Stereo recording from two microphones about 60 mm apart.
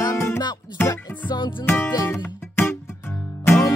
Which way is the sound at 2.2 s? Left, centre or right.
Left.